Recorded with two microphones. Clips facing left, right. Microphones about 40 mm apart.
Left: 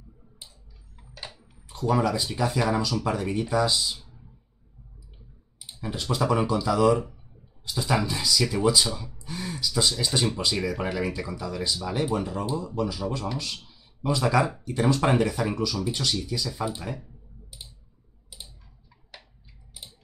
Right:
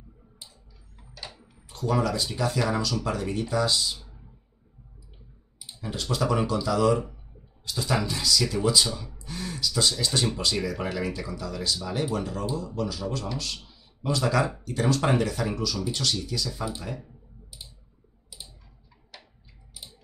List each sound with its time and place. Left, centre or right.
0.4 s a sound: left
1.7 s speech: centre
5.8 s speech: centre